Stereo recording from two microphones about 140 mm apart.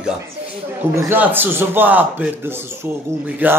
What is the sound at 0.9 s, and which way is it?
A man's voice, 15° right (ahead or behind).